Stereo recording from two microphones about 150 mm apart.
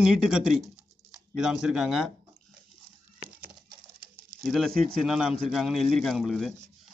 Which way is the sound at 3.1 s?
35° right (ahead or behind).